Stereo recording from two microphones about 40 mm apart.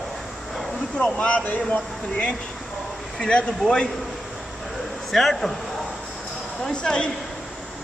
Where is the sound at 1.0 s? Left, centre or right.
Left.